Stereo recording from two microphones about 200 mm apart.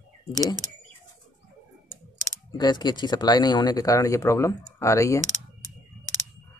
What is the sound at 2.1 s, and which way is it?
Speech, 20° left (ahead or behind).